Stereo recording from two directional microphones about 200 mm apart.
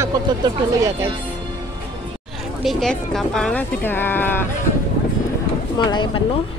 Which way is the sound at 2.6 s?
Centre (ahead or behind).